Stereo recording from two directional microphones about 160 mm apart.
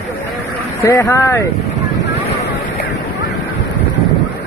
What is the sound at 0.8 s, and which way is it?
Speech, 20° left (ahead or behind).